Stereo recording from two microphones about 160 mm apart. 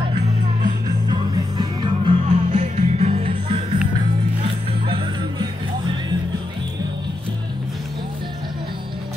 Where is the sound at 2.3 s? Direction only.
45° right (ahead or behind); by 5.5 s 30° right (ahead or behind).